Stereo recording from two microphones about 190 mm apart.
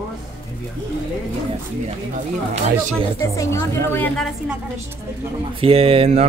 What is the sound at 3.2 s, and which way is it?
A woman's voice, 15° left (ahead or behind).